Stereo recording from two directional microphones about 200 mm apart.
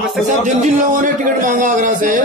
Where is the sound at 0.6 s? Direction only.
40° right (ahead or behind).